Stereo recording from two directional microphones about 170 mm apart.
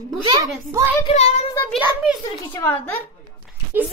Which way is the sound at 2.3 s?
25° left (ahead or behind).